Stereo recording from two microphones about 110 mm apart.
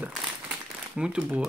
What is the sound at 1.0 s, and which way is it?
Speech, 10° right (ahead or behind).